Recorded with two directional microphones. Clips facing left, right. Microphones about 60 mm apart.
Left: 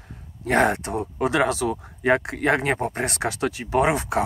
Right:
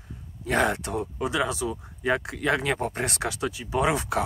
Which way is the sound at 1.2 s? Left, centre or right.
Left.